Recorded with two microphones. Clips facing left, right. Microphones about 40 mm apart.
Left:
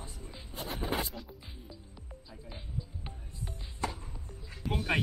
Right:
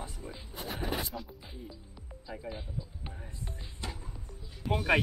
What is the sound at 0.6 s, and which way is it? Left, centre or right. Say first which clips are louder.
Speech: left 1 dB; centre.